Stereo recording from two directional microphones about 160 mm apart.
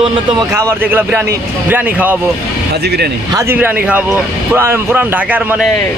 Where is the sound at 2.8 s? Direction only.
85° right.